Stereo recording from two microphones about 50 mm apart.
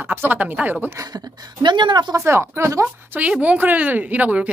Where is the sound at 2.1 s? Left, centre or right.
Right.